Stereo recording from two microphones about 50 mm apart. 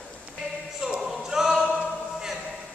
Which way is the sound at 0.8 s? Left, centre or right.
Centre.